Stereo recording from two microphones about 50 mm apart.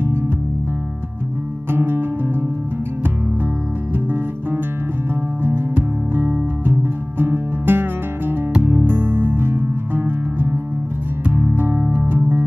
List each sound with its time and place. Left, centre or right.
1.7 s music: right
3.9 s music: right
11.8 s music: right